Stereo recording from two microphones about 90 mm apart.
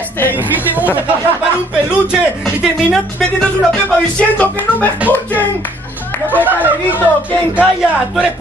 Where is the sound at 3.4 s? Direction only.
10° left (ahead or behind).